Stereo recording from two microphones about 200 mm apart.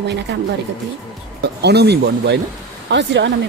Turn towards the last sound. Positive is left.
turn(degrees=-60)  # may be behind; listen again after turning